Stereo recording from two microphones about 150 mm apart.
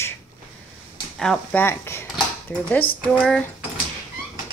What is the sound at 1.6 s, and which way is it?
A woman's voice, 15° left (ahead or behind).